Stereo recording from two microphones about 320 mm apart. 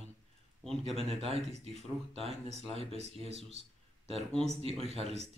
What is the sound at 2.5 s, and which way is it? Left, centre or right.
Speech, centre.